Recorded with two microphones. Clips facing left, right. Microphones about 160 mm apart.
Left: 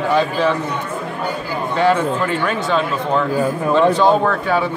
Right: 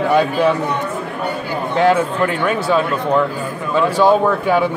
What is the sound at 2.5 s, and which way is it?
Speech, 5° right (ahead or behind).